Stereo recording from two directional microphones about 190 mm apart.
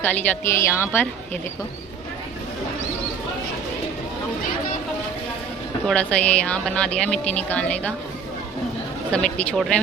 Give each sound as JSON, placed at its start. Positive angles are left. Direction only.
{"t": 0.0, "sound": "speech", "side_deg": 10}
{"t": 5.9, "sound": "speech", "side_deg": 5}
{"t": 9.1, "sound": "speech", "side_deg": 5}